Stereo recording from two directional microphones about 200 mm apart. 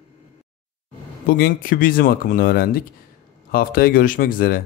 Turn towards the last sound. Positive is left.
turn(degrees=45)  # may be behind; listen again after turning